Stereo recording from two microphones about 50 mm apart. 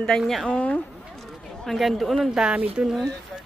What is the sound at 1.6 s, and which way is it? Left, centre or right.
Speech, centre.